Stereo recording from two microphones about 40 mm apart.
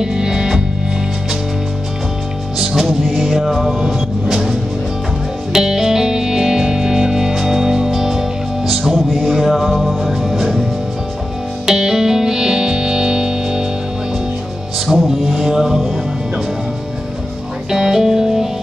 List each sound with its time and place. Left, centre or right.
0.0 s music: centre
3.0 s music: centre
8.9 s music: centre
11.6 s music: centre
15.0 s mantra: centre
17.6 s music: centre